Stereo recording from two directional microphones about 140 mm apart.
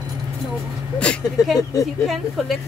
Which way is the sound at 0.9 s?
5° left (ahead or behind).